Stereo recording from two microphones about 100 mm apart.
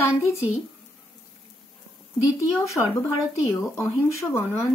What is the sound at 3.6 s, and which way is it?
Speech, 25° left (ahead or behind).